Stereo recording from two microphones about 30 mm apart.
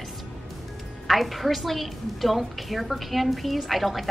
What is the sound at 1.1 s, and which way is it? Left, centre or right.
A woman's voice, centre.